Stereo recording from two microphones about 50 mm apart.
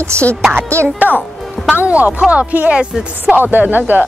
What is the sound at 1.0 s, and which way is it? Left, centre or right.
Speech, left.